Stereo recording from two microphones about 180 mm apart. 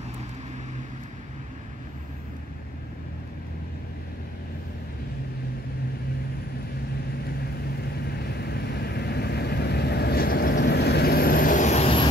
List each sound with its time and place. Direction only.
8.1 s vehicle: 60° left (ahead or behind); by 12.1 s 35° left (ahead or behind)